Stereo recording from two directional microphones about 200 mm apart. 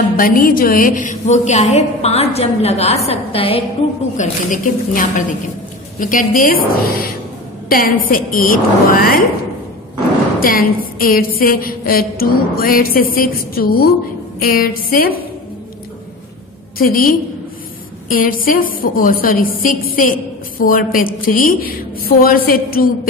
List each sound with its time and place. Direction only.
0.2 s a woman's voice: 45° left (ahead or behind); by 3.6 s 30° left (ahead or behind)
4.2 s a woman's voice: 40° left (ahead or behind)
10.4 s a woman's voice: 45° left (ahead or behind)
16.7 s a woman's voice: 45° left (ahead or behind)
18.1 s a woman's voice: 45° left (ahead or behind)